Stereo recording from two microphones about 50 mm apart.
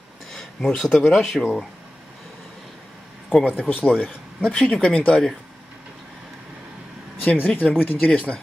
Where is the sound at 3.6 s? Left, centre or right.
Left.